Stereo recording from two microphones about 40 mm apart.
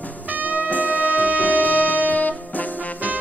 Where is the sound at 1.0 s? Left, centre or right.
Left.